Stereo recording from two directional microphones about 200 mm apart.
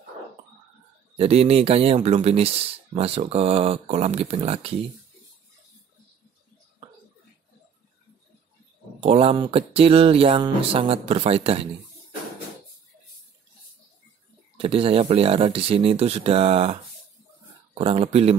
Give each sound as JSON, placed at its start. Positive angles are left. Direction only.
{"t": 1.1, "sound": "speech", "side_deg": -30}
{"t": 9.0, "sound": "speech", "side_deg": -30}
{"t": 14.6, "sound": "speech", "side_deg": -30}
{"t": 17.7, "sound": "speech", "side_deg": -30}